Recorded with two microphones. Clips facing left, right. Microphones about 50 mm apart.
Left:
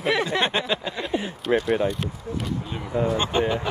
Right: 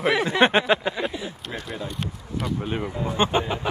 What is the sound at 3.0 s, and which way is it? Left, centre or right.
Speech, right.